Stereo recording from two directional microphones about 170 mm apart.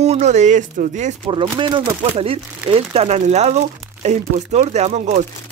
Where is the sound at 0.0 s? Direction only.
40° right (ahead or behind).